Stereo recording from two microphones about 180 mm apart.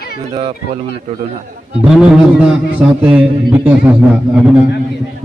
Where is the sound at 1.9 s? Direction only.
5° right (ahead or behind).